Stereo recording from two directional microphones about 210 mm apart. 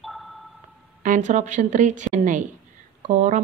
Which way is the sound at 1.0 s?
35° right (ahead or behind).